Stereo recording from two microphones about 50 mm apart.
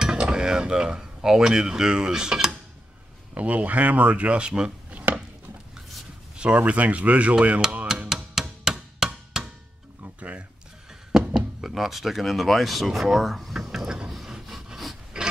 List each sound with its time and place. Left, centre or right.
0.0 s mechanisms: centre
3.3 s speech: right
4.9 s chopping: right
6.3 s speech: right
8.1 s music: centre
11.3 s speech: centre
14.1 s wood: centre